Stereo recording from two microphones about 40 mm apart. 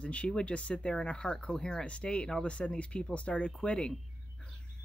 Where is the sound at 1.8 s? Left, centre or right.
Left.